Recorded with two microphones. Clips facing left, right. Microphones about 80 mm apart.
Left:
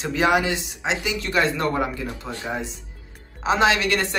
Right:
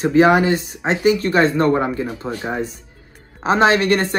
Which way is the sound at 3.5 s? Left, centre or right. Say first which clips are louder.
Right 5 dB; right.